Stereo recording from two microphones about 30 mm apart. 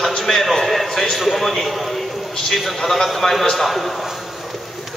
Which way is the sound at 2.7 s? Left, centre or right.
Centre.